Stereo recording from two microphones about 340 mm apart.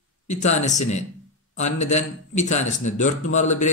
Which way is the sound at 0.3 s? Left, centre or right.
Centre.